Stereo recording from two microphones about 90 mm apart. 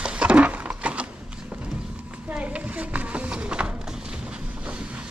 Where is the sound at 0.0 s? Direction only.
10° right (ahead or behind).